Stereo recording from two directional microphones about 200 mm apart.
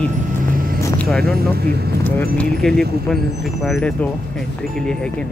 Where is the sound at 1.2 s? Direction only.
50° right (ahead or behind).